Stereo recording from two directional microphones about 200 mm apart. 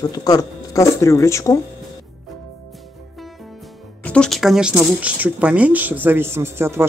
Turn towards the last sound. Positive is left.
turn(degrees=-10)  # may be behind; listen again after turning